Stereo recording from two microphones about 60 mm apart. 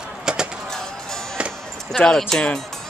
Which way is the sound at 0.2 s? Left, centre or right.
Centre.